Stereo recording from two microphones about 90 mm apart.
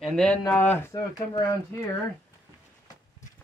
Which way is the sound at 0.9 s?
45° left (ahead or behind).